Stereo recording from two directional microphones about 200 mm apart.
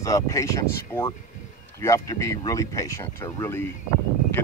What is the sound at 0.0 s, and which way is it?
Speech, 15° left (ahead or behind).